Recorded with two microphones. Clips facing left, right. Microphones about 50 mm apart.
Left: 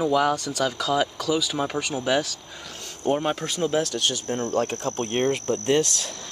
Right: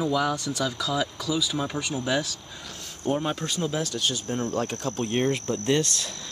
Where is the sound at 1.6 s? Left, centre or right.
Centre.